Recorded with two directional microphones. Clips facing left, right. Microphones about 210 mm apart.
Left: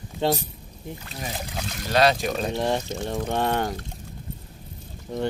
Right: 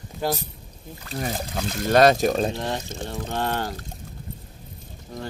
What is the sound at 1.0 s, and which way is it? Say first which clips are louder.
Speech: right 7 dB; 50° right (ahead or behind).